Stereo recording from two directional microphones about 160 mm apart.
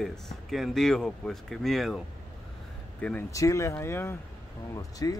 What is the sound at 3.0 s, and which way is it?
Speech, 10° left (ahead or behind).